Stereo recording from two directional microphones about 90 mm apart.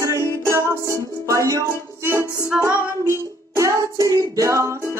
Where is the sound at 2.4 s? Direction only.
10° right (ahead or behind).